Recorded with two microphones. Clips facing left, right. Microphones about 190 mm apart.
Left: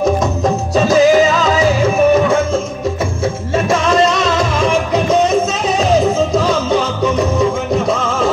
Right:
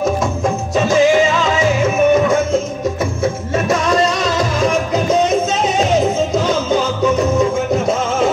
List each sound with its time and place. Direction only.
0.4 s music: 40° left (ahead or behind)